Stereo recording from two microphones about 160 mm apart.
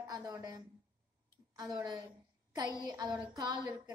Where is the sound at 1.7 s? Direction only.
20° right (ahead or behind).